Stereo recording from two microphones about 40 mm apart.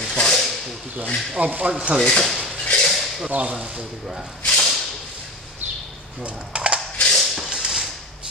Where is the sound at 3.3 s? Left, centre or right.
Right.